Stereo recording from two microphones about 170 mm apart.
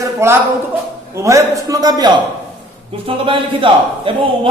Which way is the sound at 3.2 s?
30° right (ahead or behind).